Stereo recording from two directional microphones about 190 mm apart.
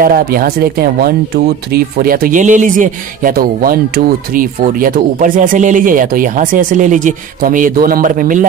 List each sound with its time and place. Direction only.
0.0 s speech: 50° right (ahead or behind)